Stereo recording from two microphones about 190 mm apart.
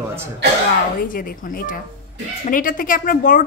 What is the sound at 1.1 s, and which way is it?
A woman's voice, 50° left (ahead or behind).